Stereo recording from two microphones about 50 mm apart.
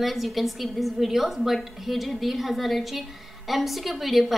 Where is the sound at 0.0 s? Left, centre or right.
Centre.